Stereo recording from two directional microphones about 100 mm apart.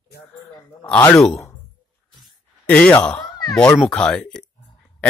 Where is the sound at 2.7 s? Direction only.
10° left (ahead or behind).